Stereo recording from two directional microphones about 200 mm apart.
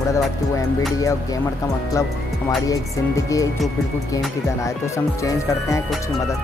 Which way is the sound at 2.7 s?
15° left (ahead or behind).